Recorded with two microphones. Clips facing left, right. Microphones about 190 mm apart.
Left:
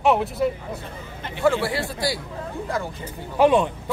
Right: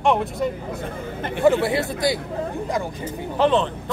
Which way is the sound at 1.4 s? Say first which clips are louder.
Right 3 dB; 20° right (ahead or behind).